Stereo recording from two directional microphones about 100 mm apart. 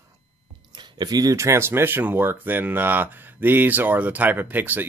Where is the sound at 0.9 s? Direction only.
40° right (ahead or behind).